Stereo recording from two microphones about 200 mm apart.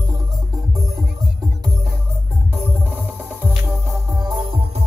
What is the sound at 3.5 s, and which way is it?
Music, centre (ahead or behind).